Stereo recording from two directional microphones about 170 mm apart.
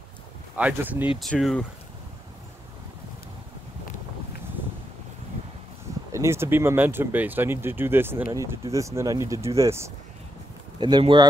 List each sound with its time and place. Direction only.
0.6 s speech: 10° right (ahead or behind)
1.2 s speech: centre (ahead or behind)
6.1 s speech: 15° right (ahead or behind)
10.8 s speech: 25° right (ahead or behind)